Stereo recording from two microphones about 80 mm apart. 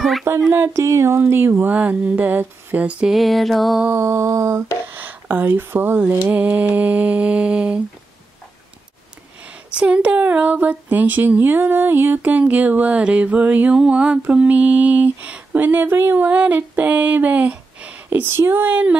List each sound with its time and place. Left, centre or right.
0.3 s mantra: right; by 3.1 s centre
3.1 s music: centre
3.9 s mantra: right
4.8 s mantra: right
9.8 s mantra: centre